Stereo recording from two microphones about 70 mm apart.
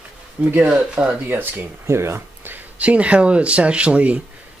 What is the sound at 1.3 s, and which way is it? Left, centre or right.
Speech, right.